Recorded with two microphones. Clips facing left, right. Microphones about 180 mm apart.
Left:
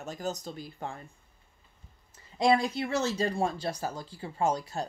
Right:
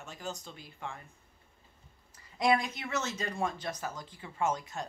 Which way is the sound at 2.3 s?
30° left (ahead or behind).